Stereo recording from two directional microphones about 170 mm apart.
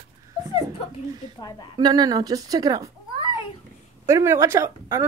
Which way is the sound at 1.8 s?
25° right (ahead or behind).